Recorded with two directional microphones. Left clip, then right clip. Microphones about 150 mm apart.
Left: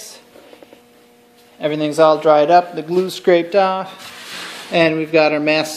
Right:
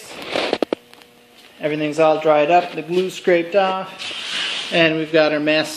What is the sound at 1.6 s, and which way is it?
A man's voice, 35° left (ahead or behind).